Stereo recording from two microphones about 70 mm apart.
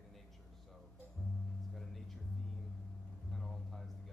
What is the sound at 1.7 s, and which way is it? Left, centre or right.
Music, centre.